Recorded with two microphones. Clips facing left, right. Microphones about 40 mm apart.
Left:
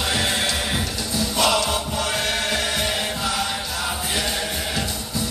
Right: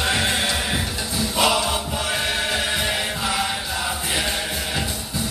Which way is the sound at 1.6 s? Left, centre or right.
Centre.